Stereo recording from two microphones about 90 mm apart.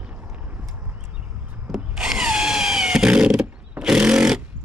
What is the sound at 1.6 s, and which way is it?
Drill, 5° right (ahead or behind).